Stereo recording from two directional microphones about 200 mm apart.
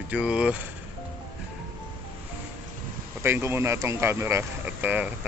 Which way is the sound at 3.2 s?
10° right (ahead or behind).